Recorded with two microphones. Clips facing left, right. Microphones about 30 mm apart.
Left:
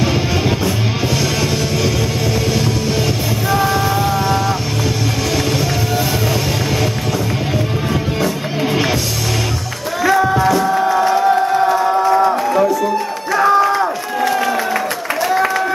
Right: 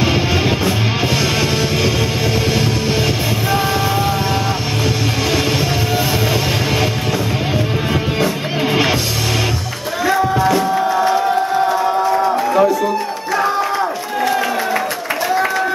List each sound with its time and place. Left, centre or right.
0.0 s music: right
3.4 s music: centre
10.6 s music: centre
11.6 s crowd: centre
11.9 s crowd: centre
12.4 s music: centre
13.4 s run: centre
14.2 s crowd: centre
15.3 s applause: centre